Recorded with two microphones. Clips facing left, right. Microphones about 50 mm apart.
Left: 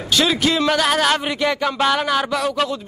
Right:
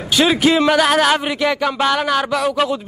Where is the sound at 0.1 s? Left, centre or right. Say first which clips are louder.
Right 4 dB; centre.